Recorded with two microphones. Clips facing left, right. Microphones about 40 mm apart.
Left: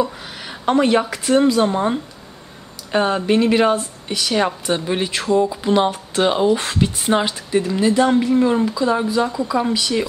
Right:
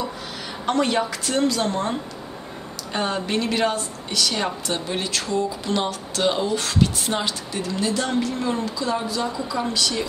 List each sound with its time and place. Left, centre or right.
0.7 s speech: centre